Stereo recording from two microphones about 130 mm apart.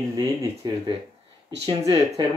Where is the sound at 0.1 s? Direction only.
30° right (ahead or behind).